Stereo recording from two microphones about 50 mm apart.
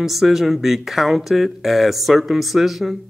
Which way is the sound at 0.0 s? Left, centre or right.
Centre.